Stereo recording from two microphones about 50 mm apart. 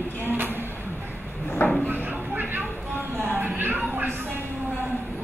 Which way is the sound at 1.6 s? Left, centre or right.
Left.